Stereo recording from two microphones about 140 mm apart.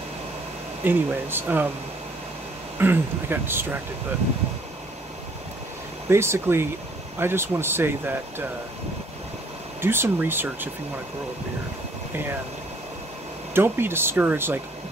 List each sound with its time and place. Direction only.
0.8 s speech: 15° right (ahead or behind)
2.8 s speech: 15° right (ahead or behind)
6.0 s speech: 20° right (ahead or behind)
9.8 s speech: 15° right (ahead or behind)
13.5 s speech: 15° right (ahead or behind)